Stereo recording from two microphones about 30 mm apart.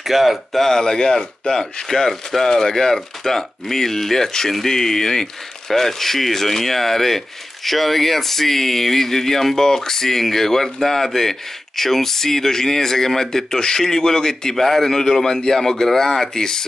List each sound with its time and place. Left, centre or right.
0.0 s speech: centre
0.5 s speech: centre
0.7 s speech: left